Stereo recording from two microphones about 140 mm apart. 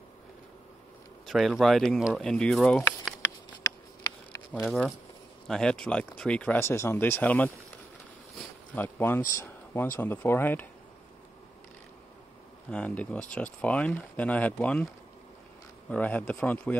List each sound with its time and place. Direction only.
1.2 s speech: centre (ahead or behind)
4.0 s a sound: 25° left (ahead or behind)
4.6 s speech: centre (ahead or behind)
8.7 s speech: 15° left (ahead or behind)
12.7 s speech: 10° left (ahead or behind)
15.9 s speech: 10° left (ahead or behind)